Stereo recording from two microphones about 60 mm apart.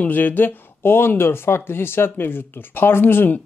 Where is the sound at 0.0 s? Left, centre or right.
Left.